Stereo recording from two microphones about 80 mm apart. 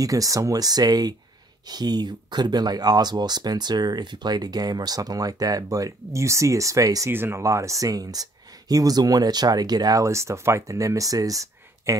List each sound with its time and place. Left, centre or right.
0.0 s speech: right
7.1 s speech: right
7.4 s speech: right
10.0 s speech: right